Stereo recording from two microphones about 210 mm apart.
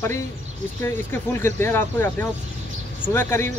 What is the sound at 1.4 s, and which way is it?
Speech, 10° left (ahead or behind).